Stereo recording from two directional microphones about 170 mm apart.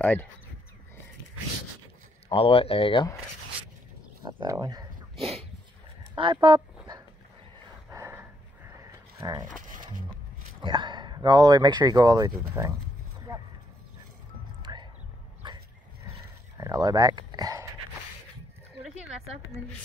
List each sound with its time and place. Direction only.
0.0 s speech: 10° left (ahead or behind)
2.2 s speech: 35° left (ahead or behind)
4.4 s speech: 25° right (ahead or behind)
5.2 s dog: 35° right (ahead or behind)
6.1 s speech: 30° right (ahead or behind)
7.9 s dog: 15° right (ahead or behind)
9.2 s speech: 25° right (ahead or behind)
9.6 s music: 50° right (ahead or behind)
10.6 s speech: 30° right (ahead or behind)
14.6 s music: 25° right (ahead or behind)
16.1 s a sound: 20° right (ahead or behind)